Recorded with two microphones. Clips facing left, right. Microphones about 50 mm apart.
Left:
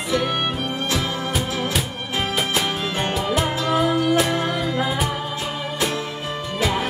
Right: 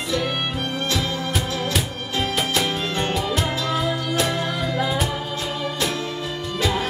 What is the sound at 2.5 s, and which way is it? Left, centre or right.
Music, centre.